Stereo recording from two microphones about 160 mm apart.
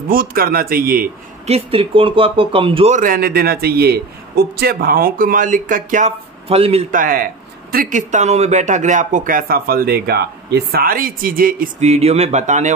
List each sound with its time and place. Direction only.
0.1 s speech: 65° right (ahead or behind)
1.5 s speech: 35° right (ahead or behind)
3.0 s speech: 65° right (ahead or behind); by 6.8 s 40° right (ahead or behind)
6.9 s speech: 60° right (ahead or behind)
11.8 s speech: 40° right (ahead or behind)